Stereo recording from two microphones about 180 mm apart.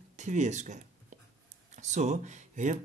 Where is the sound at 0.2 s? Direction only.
40° right (ahead or behind).